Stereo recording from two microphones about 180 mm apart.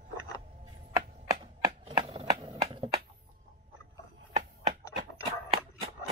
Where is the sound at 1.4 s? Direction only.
35° right (ahead or behind).